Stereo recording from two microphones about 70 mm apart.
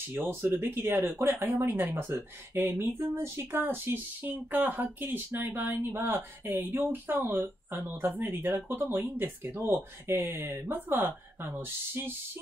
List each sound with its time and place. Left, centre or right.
0.1 s speech: right